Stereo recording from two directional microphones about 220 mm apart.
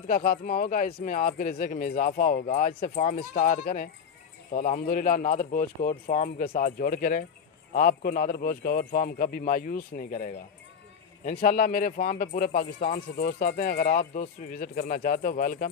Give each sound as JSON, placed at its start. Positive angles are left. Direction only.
{"t": 0.0, "sound": "speech", "side_deg": 30}